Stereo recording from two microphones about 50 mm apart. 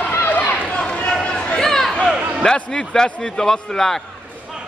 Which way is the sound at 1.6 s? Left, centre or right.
Centre.